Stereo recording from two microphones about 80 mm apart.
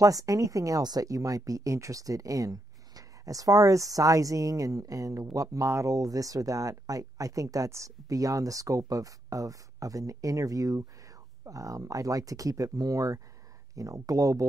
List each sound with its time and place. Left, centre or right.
0.0 s speech: right